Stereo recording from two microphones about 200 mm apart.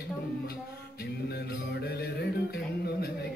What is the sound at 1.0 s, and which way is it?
Music, 55° left (ahead or behind).